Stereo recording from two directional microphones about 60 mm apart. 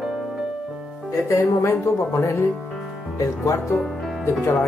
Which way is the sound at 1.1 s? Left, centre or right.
Left.